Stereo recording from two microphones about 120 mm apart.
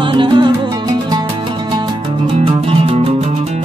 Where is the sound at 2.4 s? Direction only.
50° right (ahead or behind).